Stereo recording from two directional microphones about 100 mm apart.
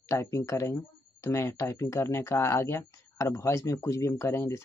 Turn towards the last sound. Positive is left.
turn(degrees=30)  # may be behind; listen again after turning